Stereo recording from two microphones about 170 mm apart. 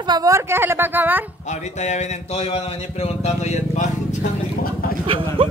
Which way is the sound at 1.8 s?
40° left (ahead or behind).